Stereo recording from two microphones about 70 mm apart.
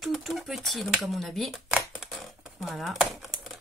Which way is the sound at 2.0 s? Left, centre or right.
Centre.